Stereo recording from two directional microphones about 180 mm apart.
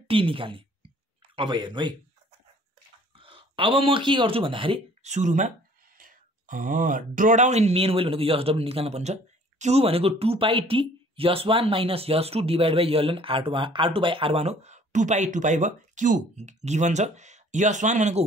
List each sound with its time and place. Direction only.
0.1 s speech: 30° right (ahead or behind)
3.2 s speech: 30° right (ahead or behind)